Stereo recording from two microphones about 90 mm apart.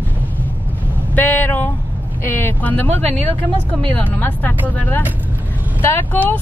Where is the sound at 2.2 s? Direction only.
25° left (ahead or behind).